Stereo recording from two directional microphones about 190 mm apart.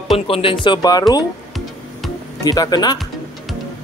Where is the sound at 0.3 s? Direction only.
30° left (ahead or behind).